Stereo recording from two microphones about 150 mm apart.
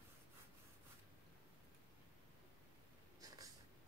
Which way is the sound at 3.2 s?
25° right (ahead or behind).